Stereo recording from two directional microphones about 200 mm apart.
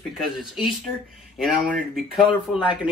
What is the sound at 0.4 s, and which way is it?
Speech, centre (ahead or behind).